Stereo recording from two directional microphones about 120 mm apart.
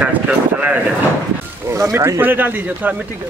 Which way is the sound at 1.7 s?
25° right (ahead or behind).